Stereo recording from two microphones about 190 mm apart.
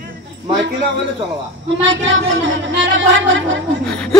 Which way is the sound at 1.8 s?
75° right (ahead or behind).